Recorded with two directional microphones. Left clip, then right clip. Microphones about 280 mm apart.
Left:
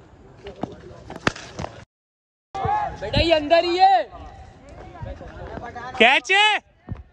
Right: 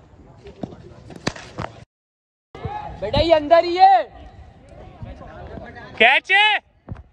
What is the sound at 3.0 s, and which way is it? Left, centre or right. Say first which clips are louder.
A man's voice: right 5 dB; left.